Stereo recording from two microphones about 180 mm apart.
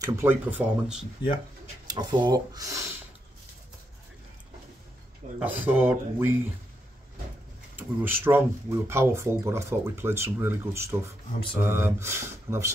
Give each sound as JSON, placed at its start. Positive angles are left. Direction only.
{"t": 0.0, "sound": "speech", "side_deg": -15}
{"t": 1.9, "sound": "speech", "side_deg": -25}
{"t": 5.4, "sound": "speech", "side_deg": -10}
{"t": 7.7, "sound": "speech", "side_deg": -10}